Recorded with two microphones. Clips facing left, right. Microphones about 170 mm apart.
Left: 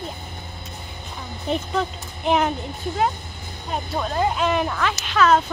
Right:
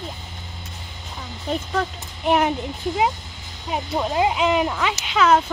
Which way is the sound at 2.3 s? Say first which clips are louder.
Right 1 dB; 5° right (ahead or behind).